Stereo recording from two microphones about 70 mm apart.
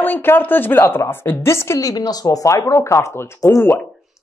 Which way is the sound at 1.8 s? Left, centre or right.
Left.